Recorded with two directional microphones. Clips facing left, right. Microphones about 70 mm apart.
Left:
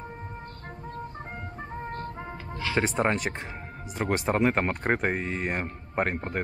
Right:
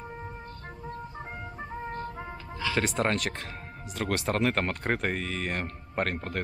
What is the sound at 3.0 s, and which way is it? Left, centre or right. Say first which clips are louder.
Speech: left 2 dB; centre.